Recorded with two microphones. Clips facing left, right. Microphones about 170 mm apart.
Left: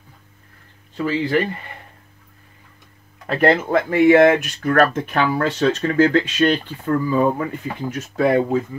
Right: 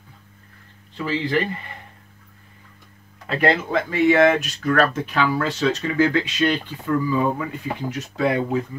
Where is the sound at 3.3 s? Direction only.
45° left (ahead or behind).